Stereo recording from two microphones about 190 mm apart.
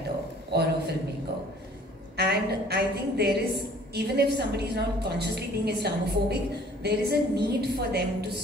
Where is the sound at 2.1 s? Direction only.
55° right (ahead or behind).